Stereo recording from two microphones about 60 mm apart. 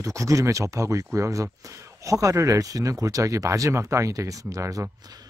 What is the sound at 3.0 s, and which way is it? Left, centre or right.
Speech, right.